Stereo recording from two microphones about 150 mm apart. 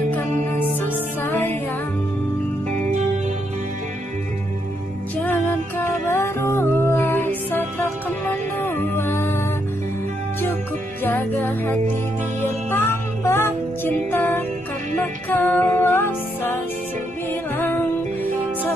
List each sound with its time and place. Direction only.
0.3 s music: 50° right (ahead or behind)
1.2 s music: 15° left (ahead or behind)
5.2 s music: 15° left (ahead or behind)
11.1 s music: 10° left (ahead or behind)